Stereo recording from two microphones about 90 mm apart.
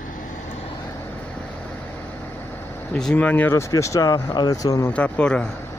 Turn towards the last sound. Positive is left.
turn(degrees=10)  # may be behind; listen again after turning